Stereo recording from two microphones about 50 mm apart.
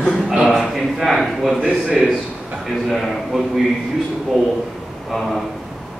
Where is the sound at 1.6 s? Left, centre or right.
Right.